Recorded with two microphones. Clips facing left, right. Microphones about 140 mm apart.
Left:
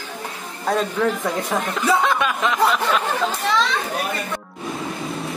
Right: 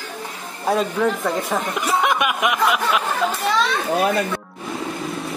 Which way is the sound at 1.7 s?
15° right (ahead or behind).